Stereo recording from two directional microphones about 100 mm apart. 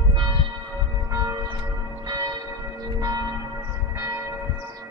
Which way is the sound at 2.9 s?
40° right (ahead or behind).